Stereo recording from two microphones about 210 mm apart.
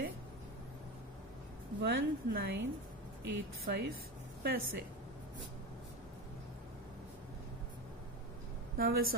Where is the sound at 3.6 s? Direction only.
45° right (ahead or behind).